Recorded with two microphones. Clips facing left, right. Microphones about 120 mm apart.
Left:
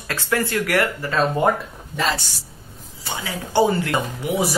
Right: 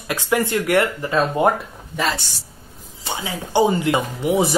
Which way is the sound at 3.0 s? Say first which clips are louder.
Right 2 dB; 20° right (ahead or behind).